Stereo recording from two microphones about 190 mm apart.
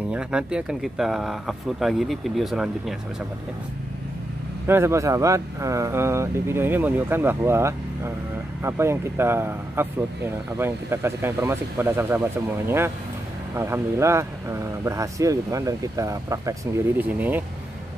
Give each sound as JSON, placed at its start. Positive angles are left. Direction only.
{"t": 0.1, "sound": "speech", "side_deg": -5}
{"t": 4.6, "sound": "speech", "side_deg": -15}